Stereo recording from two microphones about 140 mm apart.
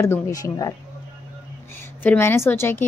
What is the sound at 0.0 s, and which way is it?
Speech, 20° left (ahead or behind).